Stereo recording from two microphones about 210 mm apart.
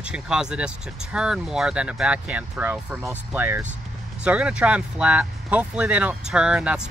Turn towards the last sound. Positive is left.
turn(degrees=-5)  # may be behind; listen again after turning